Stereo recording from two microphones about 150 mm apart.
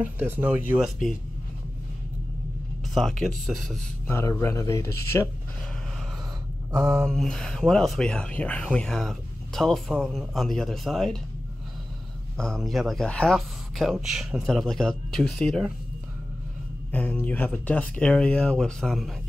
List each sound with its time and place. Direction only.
0.0 s speech: 10° right (ahead or behind)
2.9 s speech: centre (ahead or behind)
4.1 s speech: 15° left (ahead or behind)
6.7 s a sound: 25° right (ahead or behind)
7.1 s speech: centre (ahead or behind)
12.4 s speech: centre (ahead or behind)
16.9 s speech: 10° left (ahead or behind)